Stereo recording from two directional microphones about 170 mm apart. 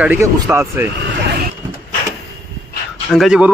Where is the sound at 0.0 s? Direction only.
10° right (ahead or behind).